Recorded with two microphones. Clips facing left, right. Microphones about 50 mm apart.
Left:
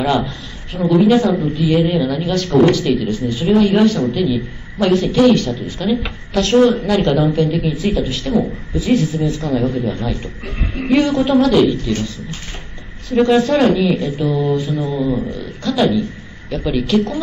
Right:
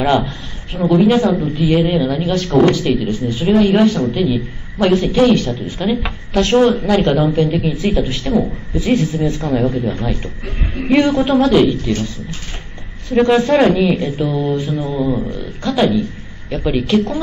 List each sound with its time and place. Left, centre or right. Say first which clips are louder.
0.0 s a man's voice: right 2 dB; right